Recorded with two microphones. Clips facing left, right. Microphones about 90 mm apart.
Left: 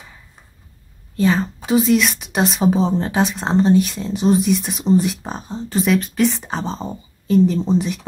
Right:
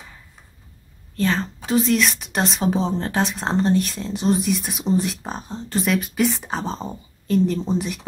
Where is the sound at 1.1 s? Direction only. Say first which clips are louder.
Left 5 dB; 10° left (ahead or behind).